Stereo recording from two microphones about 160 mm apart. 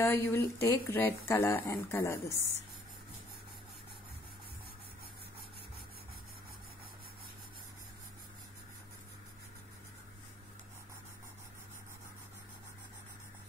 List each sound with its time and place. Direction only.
0.0 s speech: 15° left (ahead or behind)